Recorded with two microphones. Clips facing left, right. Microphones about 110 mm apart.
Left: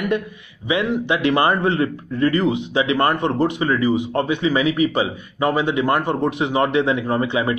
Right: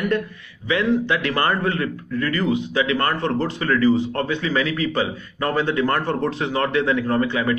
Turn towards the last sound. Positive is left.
turn(degrees=20)  # may be behind; listen again after turning